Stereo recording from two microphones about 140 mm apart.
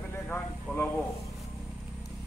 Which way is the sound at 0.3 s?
15° left (ahead or behind).